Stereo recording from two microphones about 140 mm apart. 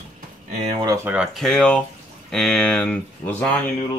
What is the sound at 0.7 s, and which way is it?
Speech, 25° right (ahead or behind).